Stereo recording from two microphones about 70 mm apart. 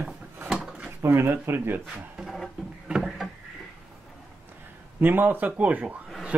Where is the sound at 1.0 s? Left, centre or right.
Right.